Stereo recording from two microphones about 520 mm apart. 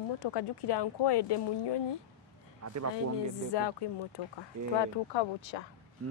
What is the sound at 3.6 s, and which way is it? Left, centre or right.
Speech, left.